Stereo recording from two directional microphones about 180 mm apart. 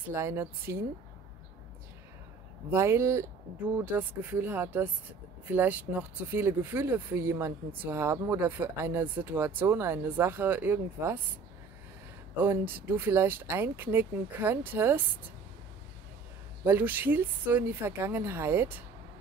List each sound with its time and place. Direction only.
0.1 s speech: 15° right (ahead or behind)
2.7 s speech: 15° right (ahead or behind)
12.4 s speech: 10° right (ahead or behind)
16.6 s speech: 10° right (ahead or behind)